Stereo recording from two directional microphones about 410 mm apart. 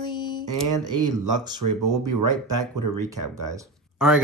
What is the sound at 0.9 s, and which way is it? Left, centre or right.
Speech, right.